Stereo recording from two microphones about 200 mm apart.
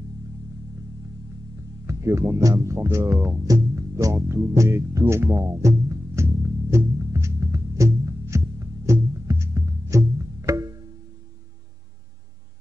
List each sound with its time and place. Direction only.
1.9 s speech: 15° right (ahead or behind)
6.7 s music: 15° right (ahead or behind)